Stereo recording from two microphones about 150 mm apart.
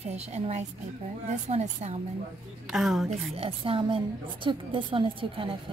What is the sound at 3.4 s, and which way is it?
A woman's voice, 40° right (ahead or behind).